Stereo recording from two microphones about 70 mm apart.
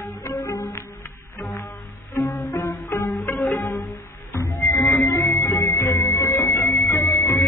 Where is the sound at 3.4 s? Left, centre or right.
Left.